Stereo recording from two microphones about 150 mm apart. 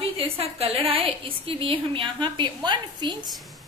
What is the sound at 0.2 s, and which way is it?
A woman's voice, 40° right (ahead or behind).